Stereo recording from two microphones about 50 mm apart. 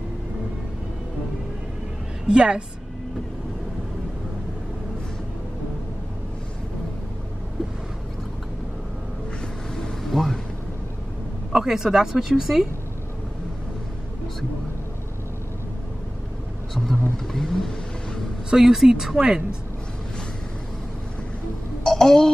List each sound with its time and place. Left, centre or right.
2.2 s speech: centre
9.8 s a sound: centre
11.5 s speech: centre
16.7 s vehicle: centre
18.5 s speech: centre
21.8 s a sound: centre